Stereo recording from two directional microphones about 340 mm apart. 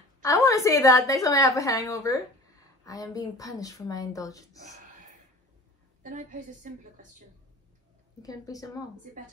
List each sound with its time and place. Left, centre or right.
0.2 s a woman's voice: centre
6.0 s a woman's voice: right
8.2 s a woman's voice: centre